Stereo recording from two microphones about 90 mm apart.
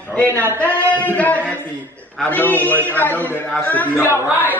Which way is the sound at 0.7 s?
20° left (ahead or behind).